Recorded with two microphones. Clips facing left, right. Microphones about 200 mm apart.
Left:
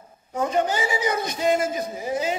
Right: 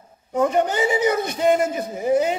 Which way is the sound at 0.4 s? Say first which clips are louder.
Right 4 dB; 55° right (ahead or behind).